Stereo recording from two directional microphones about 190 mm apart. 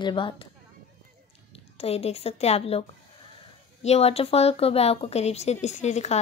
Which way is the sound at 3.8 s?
35° left (ahead or behind).